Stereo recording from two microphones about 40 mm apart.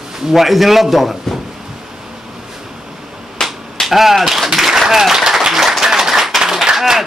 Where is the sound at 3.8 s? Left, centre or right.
Centre.